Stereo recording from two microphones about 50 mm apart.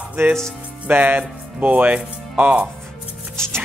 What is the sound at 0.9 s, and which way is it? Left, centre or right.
Speech, right.